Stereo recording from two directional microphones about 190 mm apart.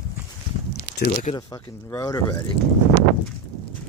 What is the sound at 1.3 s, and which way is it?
Speech, 15° left (ahead or behind).